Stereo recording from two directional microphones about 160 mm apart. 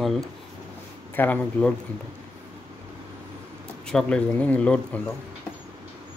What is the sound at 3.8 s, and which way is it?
A man's voice, 5° left (ahead or behind).